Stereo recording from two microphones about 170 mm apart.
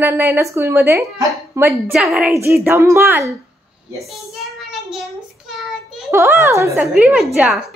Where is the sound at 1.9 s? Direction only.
Centre (ahead or behind).